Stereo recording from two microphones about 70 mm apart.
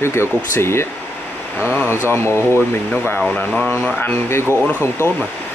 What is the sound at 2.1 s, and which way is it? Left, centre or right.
Speech, left.